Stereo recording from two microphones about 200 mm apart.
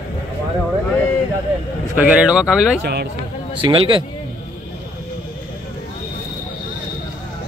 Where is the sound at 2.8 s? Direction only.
55° right (ahead or behind).